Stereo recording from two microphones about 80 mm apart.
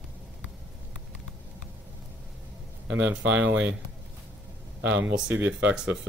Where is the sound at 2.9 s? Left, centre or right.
Right.